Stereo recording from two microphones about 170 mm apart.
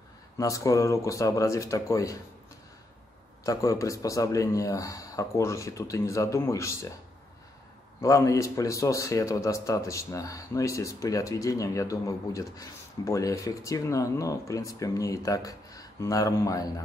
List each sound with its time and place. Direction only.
0.4 s a man's voice: 20° left (ahead or behind)
3.4 s a man's voice: 20° left (ahead or behind)
8.0 s a man's voice: 20° left (ahead or behind)